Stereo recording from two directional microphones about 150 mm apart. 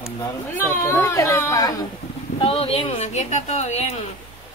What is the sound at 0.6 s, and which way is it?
A woman's voice, 15° left (ahead or behind).